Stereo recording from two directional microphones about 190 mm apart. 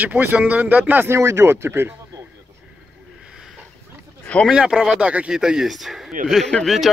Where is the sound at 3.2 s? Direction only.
5° right (ahead or behind).